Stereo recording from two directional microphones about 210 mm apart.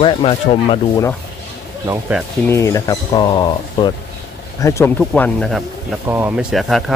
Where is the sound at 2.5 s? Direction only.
15° left (ahead or behind).